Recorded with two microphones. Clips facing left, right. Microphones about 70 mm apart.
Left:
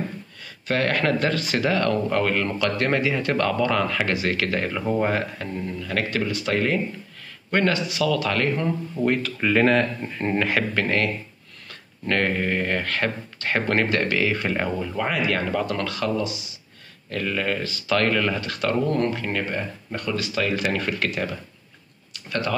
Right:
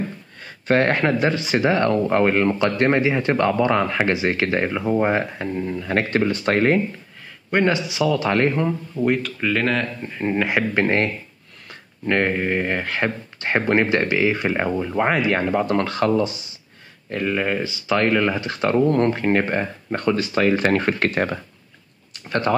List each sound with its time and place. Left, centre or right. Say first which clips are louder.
0.4 s speech: right 6 dB; right
4.7 s speech: right 2 dB; centre; by 6.8 s right
7.5 s speech: right 3 dB; centre
9.0 s speech: right 2 dB; centre
9.4 s speech: left 2 dB; centre
10.5 s speech: right 3 dB; right
15.0 s speech: right 5 dB; right
17.1 s speech: right 3 dB; right